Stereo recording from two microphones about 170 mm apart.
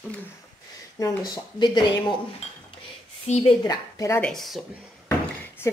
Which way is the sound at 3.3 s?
40° left (ahead or behind).